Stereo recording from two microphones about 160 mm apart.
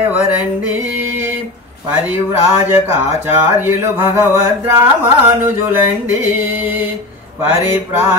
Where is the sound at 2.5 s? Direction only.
15° right (ahead or behind).